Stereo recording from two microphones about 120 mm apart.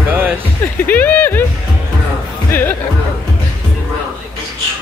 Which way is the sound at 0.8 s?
15° left (ahead or behind).